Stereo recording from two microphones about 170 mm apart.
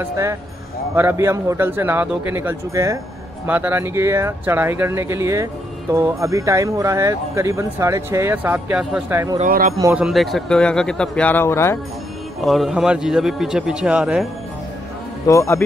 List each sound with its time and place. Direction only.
0.0 s speech: 15° right (ahead or behind)
9.4 s a man's voice: 50° right (ahead or behind)
9.9 s a man's voice: centre (ahead or behind); by 11.8 s 15° left (ahead or behind)
12.4 s a man's voice: centre (ahead or behind)
15.2 s speech: 15° left (ahead or behind)